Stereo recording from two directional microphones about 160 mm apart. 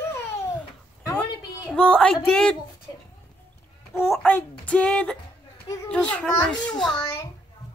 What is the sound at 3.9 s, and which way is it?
A child's voice, 15° left (ahead or behind).